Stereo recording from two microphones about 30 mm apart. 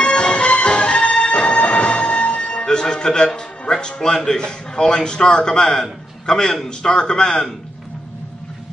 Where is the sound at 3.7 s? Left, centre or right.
Left.